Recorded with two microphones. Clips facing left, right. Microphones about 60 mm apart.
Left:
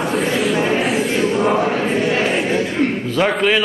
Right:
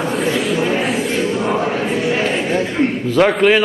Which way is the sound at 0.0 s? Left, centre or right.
Centre.